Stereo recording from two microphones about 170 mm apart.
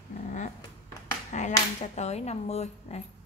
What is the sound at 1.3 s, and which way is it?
A woman's voice, 45° left (ahead or behind).